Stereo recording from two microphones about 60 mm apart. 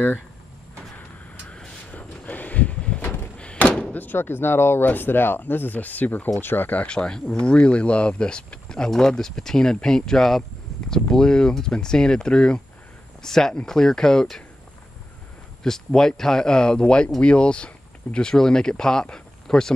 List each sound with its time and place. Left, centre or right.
1.9 s a sound: left
3.0 s a sound: left
3.3 s thunk: left
3.9 s speech: left
6.9 s speech: centre
15.6 s speech: centre